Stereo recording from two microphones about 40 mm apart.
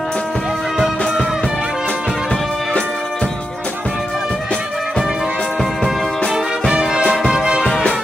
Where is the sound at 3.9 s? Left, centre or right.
Centre.